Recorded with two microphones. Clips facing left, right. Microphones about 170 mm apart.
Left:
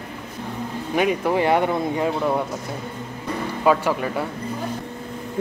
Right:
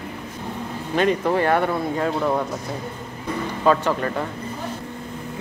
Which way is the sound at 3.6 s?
10° left (ahead or behind).